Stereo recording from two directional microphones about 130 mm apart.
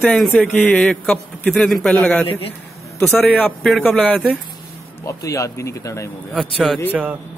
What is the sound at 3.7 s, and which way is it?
Speech, 5° right (ahead or behind).